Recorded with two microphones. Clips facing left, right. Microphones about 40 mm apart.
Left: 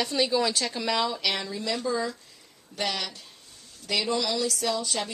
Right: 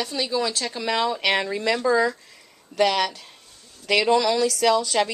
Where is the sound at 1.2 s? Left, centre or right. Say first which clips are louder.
Right 7 dB; right.